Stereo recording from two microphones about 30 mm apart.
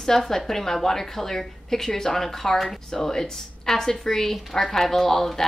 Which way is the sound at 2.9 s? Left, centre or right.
Centre.